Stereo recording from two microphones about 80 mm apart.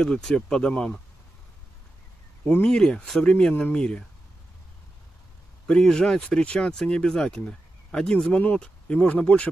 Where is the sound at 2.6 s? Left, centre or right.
Centre.